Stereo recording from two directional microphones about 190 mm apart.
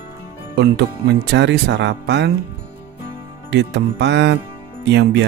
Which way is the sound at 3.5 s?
65° right (ahead or behind).